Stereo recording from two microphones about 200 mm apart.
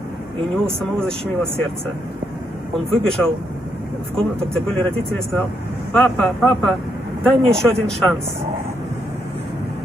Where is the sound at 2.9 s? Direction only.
Centre (ahead or behind).